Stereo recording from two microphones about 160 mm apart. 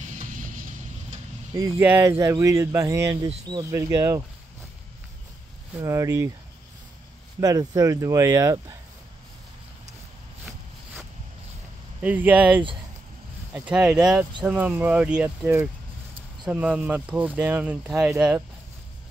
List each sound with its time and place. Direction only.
0.1 s music: 55° right (ahead or behind)
1.8 s speech: 15° right (ahead or behind)
5.8 s speech: 20° right (ahead or behind)
7.3 s speech: 20° right (ahead or behind)
12.0 s speech: 10° right (ahead or behind)